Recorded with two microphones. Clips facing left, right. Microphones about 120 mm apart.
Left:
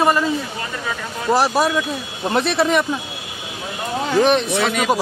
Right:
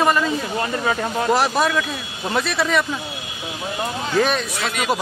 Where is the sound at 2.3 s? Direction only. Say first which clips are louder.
Left 4 dB; 25° left (ahead or behind).